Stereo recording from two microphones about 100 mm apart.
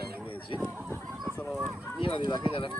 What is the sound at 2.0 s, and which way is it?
Speech, 55° left (ahead or behind).